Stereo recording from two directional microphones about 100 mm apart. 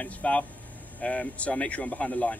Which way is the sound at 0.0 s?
15° left (ahead or behind).